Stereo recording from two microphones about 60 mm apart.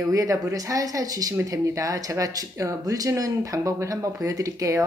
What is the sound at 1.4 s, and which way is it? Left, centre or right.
Speech, right.